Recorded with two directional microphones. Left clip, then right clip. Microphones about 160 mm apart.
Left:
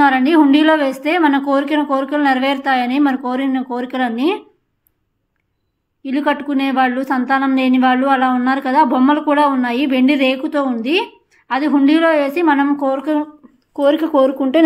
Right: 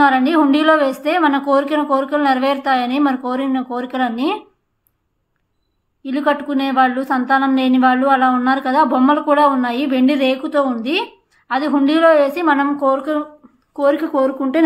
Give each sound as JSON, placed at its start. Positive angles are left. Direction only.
{"t": 0.0, "sound": "a woman's voice", "side_deg": 15}
{"t": 6.0, "sound": "a woman's voice", "side_deg": 15}